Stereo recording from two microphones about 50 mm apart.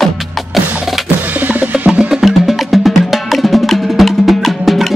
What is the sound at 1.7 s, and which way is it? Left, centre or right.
Music, right.